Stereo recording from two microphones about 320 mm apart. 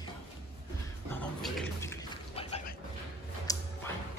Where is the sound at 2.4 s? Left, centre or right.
Centre.